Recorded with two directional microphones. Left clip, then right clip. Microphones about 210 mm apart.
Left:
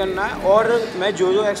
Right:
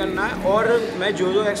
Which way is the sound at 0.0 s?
15° left (ahead or behind).